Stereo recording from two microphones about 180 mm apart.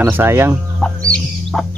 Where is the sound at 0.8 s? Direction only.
5° left (ahead or behind).